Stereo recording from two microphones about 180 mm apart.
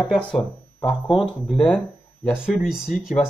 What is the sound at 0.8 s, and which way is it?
Speech, 25° left (ahead or behind).